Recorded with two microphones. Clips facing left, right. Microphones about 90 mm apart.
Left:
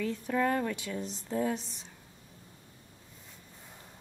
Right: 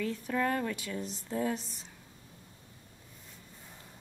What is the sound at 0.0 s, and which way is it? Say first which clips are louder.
A woman's voice: left 2 dB; 5° left (ahead or behind).